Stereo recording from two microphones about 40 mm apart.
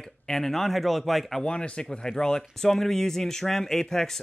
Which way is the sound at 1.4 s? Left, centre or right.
Left.